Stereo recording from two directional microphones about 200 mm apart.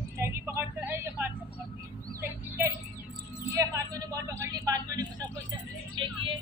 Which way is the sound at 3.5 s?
15° right (ahead or behind).